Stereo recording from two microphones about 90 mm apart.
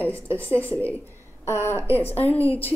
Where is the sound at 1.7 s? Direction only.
30° right (ahead or behind).